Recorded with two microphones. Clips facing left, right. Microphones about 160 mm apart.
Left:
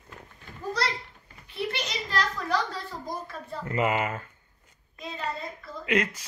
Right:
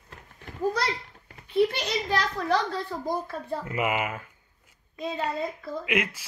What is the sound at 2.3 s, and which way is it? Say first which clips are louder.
Speech: right 3 dB; 55° right (ahead or behind).